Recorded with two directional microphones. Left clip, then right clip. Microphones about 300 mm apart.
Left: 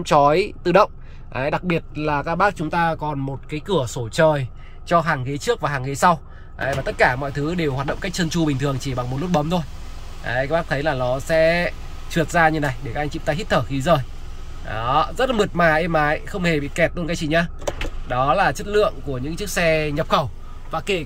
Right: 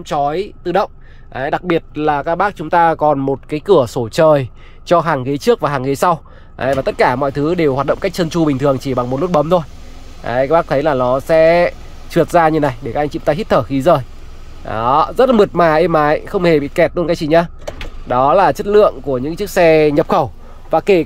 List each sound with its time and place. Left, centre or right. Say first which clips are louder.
0.0 s speech: left 2 dB; centre